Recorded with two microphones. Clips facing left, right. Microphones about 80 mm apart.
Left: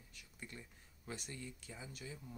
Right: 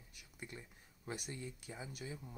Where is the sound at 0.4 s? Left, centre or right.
Right.